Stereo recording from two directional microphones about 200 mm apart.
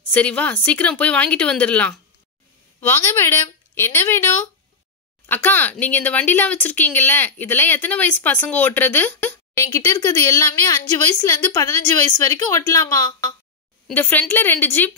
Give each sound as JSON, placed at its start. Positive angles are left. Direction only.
{"t": 0.1, "sound": "speech", "side_deg": 5}